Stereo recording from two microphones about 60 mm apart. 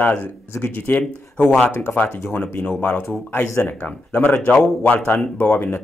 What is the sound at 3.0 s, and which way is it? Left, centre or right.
Speech, left.